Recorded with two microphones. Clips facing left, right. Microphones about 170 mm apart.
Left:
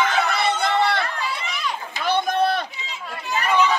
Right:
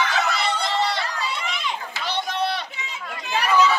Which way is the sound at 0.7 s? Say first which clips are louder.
Left 3 dB; 55° left (ahead or behind).